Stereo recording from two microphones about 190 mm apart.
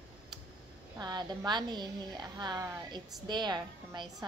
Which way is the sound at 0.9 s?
20° right (ahead or behind).